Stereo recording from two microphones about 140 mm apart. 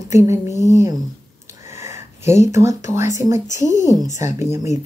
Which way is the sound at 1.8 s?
20° right (ahead or behind).